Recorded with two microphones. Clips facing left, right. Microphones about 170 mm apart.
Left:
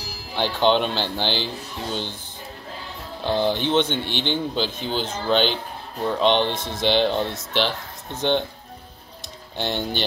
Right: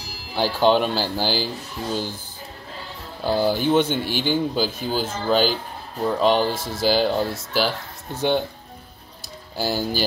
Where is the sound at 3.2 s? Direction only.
5° right (ahead or behind).